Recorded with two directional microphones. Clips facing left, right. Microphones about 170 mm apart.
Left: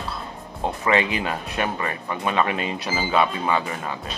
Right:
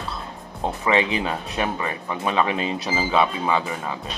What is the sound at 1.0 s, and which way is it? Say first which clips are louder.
Speech: right 2 dB; 30° right (ahead or behind).